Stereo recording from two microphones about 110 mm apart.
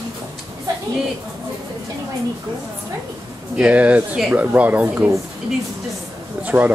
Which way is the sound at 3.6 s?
10° right (ahead or behind).